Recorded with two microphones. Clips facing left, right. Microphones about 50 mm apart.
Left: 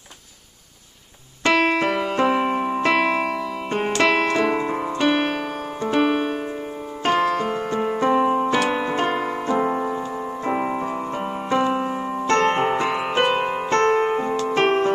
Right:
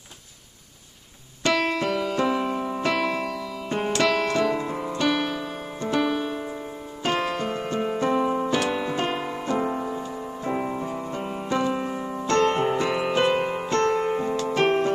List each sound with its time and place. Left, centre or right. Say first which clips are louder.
1.5 s keyboard: left 5 dB; left
4.0 s music: left 4 dB; left
4.5 s piano: left 4 dB; left
5.9 s keyboard: left 5 dB; left
7.0 s music: left 5 dB; left
8.1 s keyboard: left 6 dB; left
8.9 s piano: left 4 dB; left
9.6 s music: left 5 dB; left